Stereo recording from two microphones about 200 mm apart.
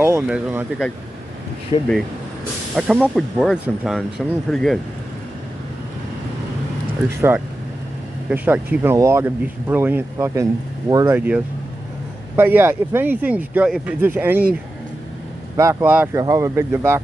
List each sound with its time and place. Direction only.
0.0 s speech: 10° right (ahead or behind)
1.7 s speech: 30° left (ahead or behind)
2.7 s speech: 5° right (ahead or behind)
7.2 s speech: 10° right (ahead or behind)
15.5 s speech: 15° right (ahead or behind)